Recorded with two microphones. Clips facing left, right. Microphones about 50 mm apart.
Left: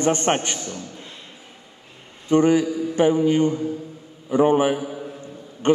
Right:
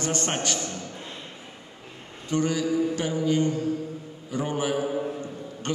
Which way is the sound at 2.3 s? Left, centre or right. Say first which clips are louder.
Left 7 dB; left.